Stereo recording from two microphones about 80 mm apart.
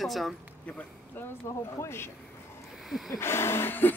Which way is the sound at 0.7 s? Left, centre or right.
Left.